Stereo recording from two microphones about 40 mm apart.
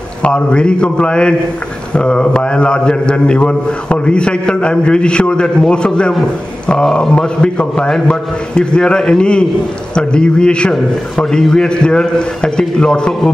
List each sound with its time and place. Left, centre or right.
0.2 s a man's voice: left